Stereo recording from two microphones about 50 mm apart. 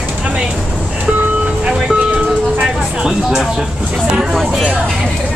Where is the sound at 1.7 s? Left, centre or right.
Centre.